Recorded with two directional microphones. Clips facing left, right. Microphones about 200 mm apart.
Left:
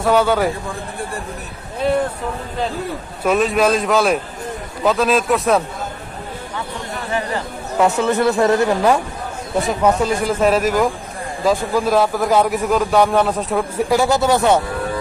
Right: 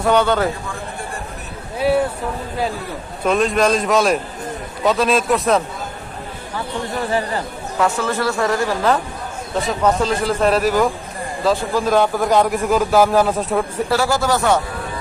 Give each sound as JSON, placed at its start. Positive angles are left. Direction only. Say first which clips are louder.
{"t": 0.0, "sound": "a man's voice", "louder": "left 1 dB", "side_deg": 5}
{"t": 1.8, "sound": "speech", "louder": "right 1 dB", "side_deg": -5}
{"t": 3.3, "sound": "a man's voice", "louder": "left 1 dB", "side_deg": 5}
{"t": 7.8, "sound": "a man's voice", "louder": "left 4 dB", "side_deg": 20}
{"t": 13.8, "sound": "speech", "louder": "left 5 dB", "side_deg": 20}